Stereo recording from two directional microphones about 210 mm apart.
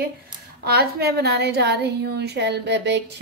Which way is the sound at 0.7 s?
50° right (ahead or behind).